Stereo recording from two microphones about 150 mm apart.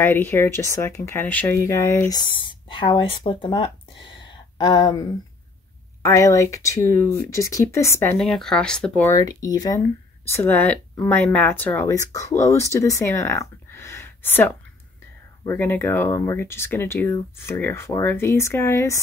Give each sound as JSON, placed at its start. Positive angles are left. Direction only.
{"t": 0.0, "sound": "speech", "side_deg": 15}
{"t": 6.0, "sound": "speech", "side_deg": 20}
{"t": 8.2, "sound": "speech", "side_deg": 0}
{"t": 9.1, "sound": "speech", "side_deg": 25}